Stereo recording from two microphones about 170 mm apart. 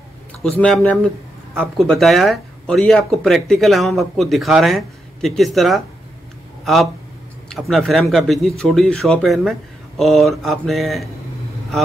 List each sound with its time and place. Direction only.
0.4 s speech: 5° left (ahead or behind)